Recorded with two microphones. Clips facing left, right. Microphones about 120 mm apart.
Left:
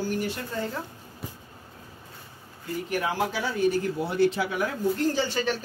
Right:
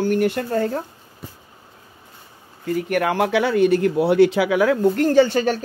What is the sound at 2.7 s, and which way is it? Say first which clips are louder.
Speech: right 7 dB; 65° right (ahead or behind).